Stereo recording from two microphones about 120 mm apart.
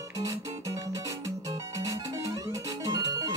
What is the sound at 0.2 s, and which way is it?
Music, 30° right (ahead or behind).